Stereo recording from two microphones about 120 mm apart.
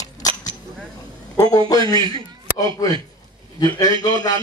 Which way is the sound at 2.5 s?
30° left (ahead or behind).